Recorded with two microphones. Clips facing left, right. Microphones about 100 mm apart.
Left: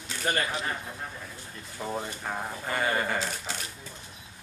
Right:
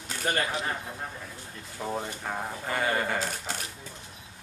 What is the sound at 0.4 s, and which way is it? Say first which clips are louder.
A man's voice: right 1 dB; 15° right (ahead or behind).